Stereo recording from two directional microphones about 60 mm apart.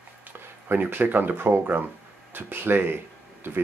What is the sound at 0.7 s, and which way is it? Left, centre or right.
Speech, right.